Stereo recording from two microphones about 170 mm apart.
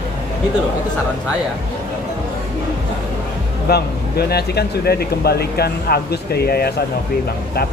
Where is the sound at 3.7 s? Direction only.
70° left (ahead or behind).